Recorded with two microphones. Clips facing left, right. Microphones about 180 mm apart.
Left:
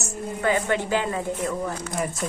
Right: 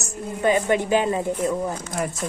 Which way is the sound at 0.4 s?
15° right (ahead or behind).